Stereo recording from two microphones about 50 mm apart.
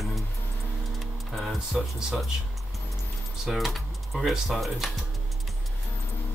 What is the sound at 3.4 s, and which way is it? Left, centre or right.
Speech, centre.